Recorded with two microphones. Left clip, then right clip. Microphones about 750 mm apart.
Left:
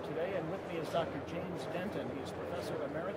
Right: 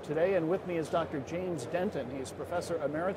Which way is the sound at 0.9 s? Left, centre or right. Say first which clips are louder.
Right 3 dB; right.